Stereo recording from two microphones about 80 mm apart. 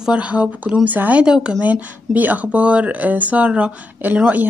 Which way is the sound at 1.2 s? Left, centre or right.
Centre.